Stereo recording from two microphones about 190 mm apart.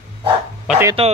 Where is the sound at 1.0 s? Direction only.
30° right (ahead or behind).